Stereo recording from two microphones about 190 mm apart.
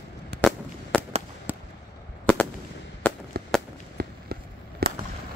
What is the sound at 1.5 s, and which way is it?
Fireworks, 10° right (ahead or behind).